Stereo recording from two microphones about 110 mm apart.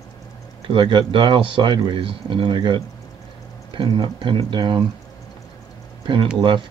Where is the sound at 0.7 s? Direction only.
50° right (ahead or behind).